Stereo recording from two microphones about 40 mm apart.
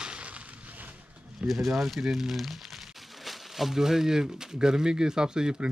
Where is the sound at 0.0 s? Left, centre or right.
Right.